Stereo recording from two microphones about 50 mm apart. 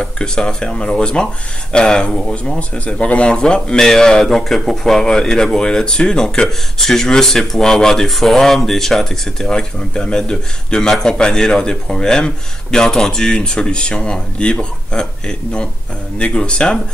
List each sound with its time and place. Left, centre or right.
0.0 s speech: centre